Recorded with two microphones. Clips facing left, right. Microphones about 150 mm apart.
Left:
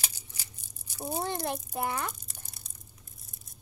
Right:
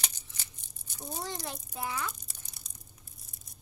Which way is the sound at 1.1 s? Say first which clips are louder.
Left 7 dB; 55° left (ahead or behind).